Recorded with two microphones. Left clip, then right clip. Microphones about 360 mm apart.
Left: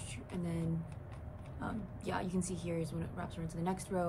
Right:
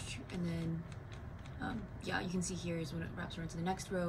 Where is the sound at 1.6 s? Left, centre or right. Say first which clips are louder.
Left 1 dB; centre.